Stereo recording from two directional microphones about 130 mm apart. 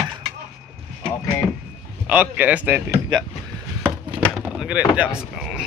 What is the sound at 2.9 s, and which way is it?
Speech, 35° right (ahead or behind).